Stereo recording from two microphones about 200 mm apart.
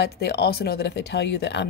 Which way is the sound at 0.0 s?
55° left (ahead or behind).